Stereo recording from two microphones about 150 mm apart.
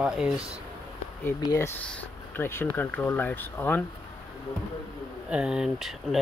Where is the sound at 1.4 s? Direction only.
20° left (ahead or behind).